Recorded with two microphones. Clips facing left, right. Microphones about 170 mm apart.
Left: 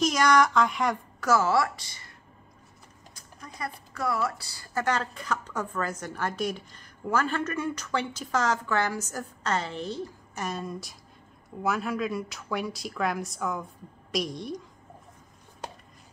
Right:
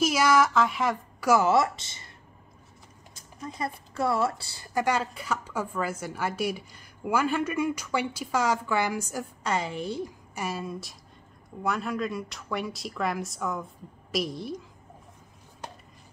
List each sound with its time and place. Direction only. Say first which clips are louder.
0.0 s a woman's voice: even; 5° right (ahead or behind)
1.3 s speech: right 2 dB; 20° right (ahead or behind)
3.4 s speech: right 4 dB; 25° right (ahead or behind)
4.7 s a woman's voice: right 2 dB; 10° right (ahead or behind)